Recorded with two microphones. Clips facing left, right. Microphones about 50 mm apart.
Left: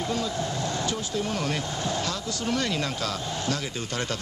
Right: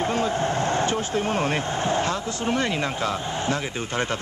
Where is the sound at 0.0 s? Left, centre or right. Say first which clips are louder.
Right 5 dB; right.